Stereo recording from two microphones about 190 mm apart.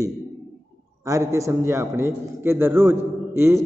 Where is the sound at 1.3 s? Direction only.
15° right (ahead or behind).